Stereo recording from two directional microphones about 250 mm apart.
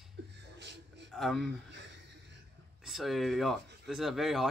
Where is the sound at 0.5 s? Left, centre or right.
Right.